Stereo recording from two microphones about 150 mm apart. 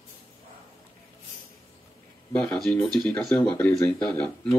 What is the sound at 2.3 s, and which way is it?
Speech, 10° left (ahead or behind).